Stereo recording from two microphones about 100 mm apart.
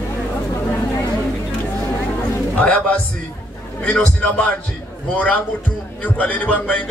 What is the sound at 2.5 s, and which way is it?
A man's voice, 15° left (ahead or behind).